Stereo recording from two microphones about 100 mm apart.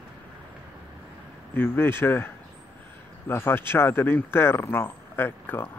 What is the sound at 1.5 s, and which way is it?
Speech, 20° left (ahead or behind).